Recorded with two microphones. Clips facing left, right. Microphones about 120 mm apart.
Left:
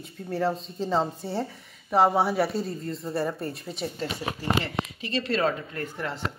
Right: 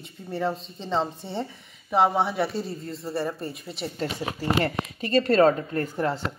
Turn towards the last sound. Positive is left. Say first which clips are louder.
# right 7 dB
turn(degrees=-40)  # may be behind; listen again after turning